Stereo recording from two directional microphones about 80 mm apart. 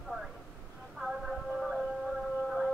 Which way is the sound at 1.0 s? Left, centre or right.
Centre.